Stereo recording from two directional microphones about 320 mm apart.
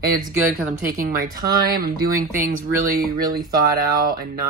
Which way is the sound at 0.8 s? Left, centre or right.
Right.